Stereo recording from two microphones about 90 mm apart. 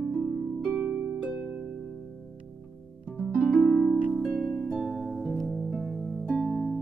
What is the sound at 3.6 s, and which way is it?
Harp, 5° left (ahead or behind).